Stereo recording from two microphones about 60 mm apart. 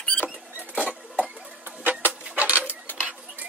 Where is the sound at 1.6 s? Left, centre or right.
Right.